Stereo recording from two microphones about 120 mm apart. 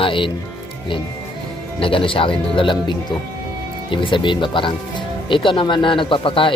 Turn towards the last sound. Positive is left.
turn(degrees=45)  # may be behind; listen again after turning